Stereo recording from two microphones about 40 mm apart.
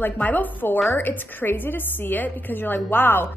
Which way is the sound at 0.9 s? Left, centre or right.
Left.